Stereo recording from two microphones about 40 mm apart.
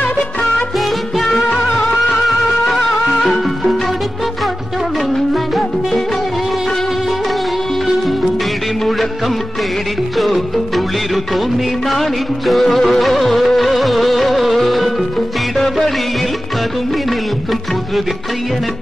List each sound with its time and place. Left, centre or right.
0.0 s music of bollywood: left
0.7 s music: centre
1.7 s music: left
2.0 s music: centre
5.1 s music: centre
10.1 s music: centre
11.3 s music of bollywood: centre
15.5 s music: centre
16.9 s music: centre